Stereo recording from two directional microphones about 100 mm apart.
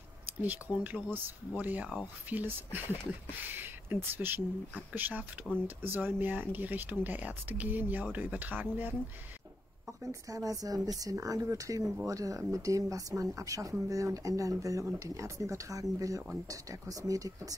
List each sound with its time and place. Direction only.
0.4 s speech: 15° right (ahead or behind)
9.8 s speech: 35° right (ahead or behind)